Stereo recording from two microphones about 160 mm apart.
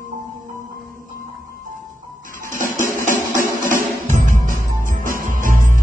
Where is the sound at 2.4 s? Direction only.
55° right (ahead or behind).